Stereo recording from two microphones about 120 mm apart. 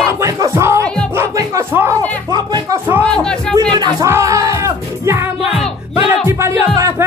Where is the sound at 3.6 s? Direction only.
35° right (ahead or behind).